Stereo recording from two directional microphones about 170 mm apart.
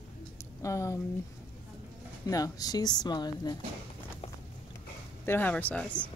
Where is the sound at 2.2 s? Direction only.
20° left (ahead or behind).